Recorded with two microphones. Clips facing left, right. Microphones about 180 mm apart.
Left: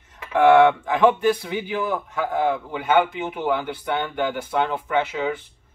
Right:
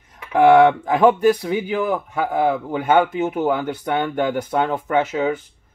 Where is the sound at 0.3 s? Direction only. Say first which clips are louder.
Right 2 dB; 40° right (ahead or behind).